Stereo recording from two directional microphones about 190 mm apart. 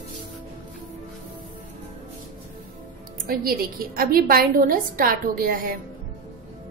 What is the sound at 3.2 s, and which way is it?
A woman's voice, 50° right (ahead or behind).